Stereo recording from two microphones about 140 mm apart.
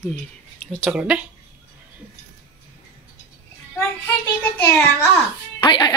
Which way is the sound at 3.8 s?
15° left (ahead or behind).